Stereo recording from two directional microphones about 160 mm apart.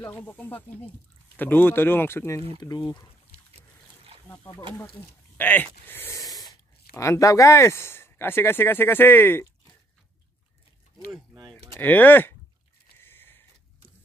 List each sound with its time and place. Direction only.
0.0 s speech: 10° left (ahead or behind)
5.4 s speech: 10° left (ahead or behind)
11.8 s speech: 10° left (ahead or behind)
13.0 s a sound: 15° left (ahead or behind)